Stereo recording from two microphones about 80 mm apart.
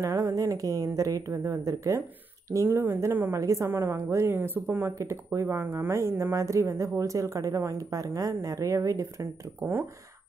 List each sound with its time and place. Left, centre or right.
0.0 s speech: right
2.5 s speech: right
3.3 s speech: right
4.9 s speech: right